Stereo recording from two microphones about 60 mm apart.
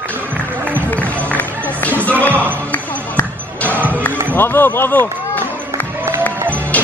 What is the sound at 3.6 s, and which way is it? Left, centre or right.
Music, left.